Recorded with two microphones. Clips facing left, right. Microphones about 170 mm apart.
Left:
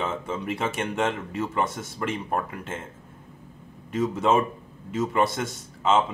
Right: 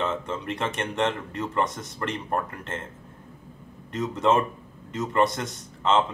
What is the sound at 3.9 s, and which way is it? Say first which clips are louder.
Speech: left 1 dB; 5° left (ahead or behind).